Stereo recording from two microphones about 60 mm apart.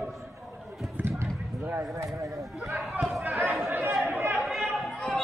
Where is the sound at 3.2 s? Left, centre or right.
Right.